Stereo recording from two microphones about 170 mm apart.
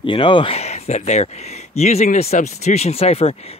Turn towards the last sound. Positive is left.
turn(degrees=35)  # may be behind; listen again after turning